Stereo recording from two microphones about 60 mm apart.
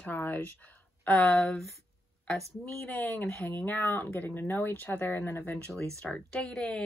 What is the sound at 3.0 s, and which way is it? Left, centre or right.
Speech, left.